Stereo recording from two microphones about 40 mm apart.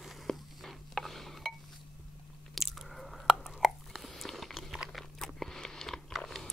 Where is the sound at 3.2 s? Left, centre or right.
Centre.